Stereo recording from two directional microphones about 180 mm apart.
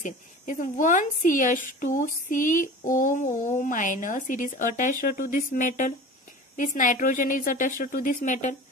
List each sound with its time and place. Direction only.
0.0 s a woman's voice: 45° left (ahead or behind)